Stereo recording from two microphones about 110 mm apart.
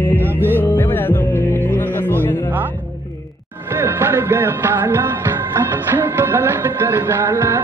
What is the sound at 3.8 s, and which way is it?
Music, 20° right (ahead or behind).